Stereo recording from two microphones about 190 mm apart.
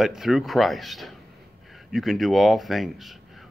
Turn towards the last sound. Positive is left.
turn(degrees=0)  # may be behind; listen again after turning